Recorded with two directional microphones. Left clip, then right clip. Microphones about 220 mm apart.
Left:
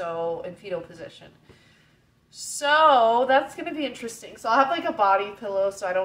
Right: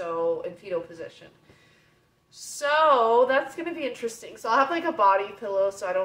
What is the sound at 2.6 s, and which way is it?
A woman's voice, centre (ahead or behind).